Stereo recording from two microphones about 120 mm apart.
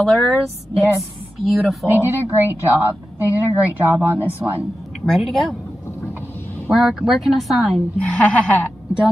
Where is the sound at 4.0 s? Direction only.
15° right (ahead or behind).